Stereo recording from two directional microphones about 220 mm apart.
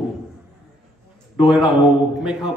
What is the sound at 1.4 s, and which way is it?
A man's voice, 5° right (ahead or behind).